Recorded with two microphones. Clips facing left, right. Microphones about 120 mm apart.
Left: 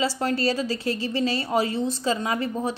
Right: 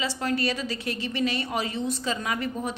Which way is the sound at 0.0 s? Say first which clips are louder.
Left 3 dB; 30° left (ahead or behind).